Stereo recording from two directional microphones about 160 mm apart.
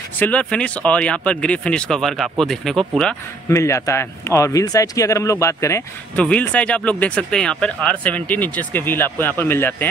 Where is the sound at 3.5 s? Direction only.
20° left (ahead or behind).